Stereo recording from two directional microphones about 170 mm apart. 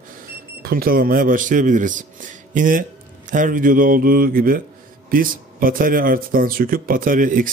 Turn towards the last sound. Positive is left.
turn(degrees=-50)  # may be behind; listen again after turning